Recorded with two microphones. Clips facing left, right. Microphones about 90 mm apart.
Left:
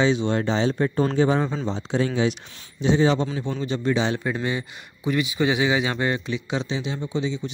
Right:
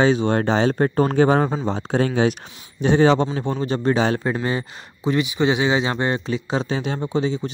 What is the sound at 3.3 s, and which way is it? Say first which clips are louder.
Speech: right 4 dB; 50° right (ahead or behind).